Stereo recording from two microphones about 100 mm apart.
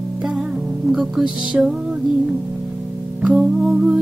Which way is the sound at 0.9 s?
5° right (ahead or behind).